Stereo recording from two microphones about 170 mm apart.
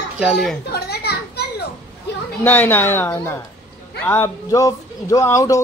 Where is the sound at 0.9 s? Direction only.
70° left (ahead or behind).